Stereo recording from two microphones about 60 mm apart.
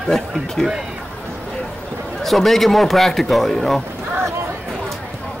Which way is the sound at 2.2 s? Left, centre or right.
Centre.